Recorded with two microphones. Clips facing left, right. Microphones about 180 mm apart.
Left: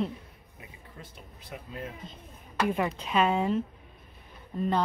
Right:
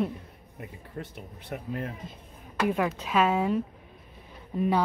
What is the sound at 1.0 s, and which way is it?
Speech, 65° right (ahead or behind).